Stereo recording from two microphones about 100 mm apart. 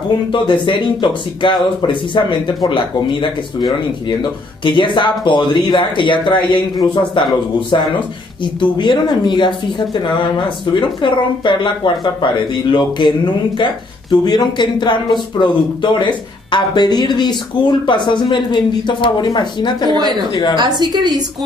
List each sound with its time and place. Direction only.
0.3 s speech: 50° left (ahead or behind)
20.5 s a woman's voice: 45° right (ahead or behind)